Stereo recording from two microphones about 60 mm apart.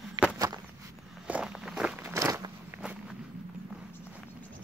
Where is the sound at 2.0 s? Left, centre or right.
Right.